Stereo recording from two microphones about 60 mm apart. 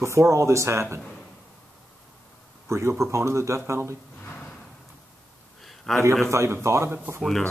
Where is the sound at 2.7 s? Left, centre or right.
Right.